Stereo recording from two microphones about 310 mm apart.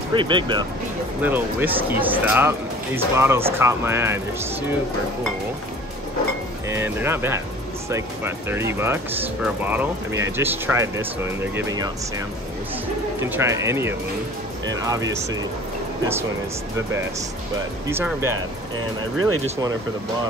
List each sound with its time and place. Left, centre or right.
0.1 s speech: centre
6.7 s speech: centre
13.2 s speech: centre
17.8 s speech: centre
19.1 s speech: right